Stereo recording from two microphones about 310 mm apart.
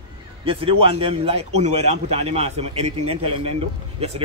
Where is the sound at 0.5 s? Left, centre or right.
Centre.